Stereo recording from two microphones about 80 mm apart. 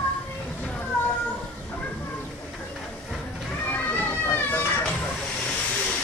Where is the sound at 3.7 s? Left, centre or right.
Left.